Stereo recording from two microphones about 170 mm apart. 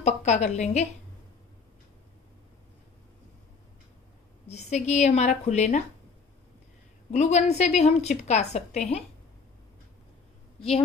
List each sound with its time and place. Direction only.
0.0 s a woman's voice: 40° left (ahead or behind)
4.5 s a woman's voice: 40° left (ahead or behind)
7.1 s a woman's voice: 40° left (ahead or behind)